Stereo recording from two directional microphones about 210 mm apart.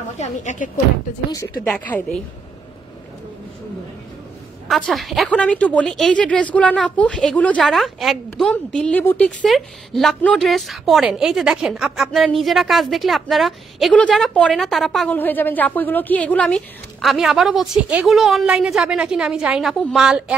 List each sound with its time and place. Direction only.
0.2 s speech: 35° left (ahead or behind)
1.3 s a woman's voice: 15° left (ahead or behind)
4.6 s a woman's voice: centre (ahead or behind)